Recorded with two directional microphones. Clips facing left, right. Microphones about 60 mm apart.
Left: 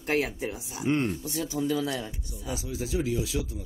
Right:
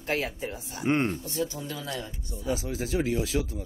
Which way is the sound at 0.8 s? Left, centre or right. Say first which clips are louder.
Right 1 dB; right.